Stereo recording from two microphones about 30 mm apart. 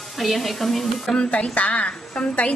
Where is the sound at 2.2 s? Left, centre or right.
Left.